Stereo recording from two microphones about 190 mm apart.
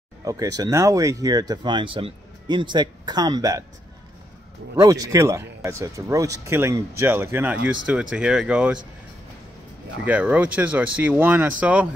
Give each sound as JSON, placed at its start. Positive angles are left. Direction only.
{"t": 0.2, "sound": "speech", "side_deg": -20}
{"t": 4.7, "sound": "speech", "side_deg": -20}
{"t": 10.0, "sound": "speech", "side_deg": -5}